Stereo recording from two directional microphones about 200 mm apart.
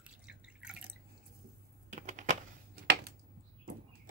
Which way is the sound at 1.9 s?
40° right (ahead or behind).